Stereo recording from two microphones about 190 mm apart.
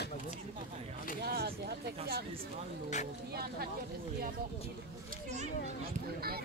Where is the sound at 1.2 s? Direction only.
55° right (ahead or behind).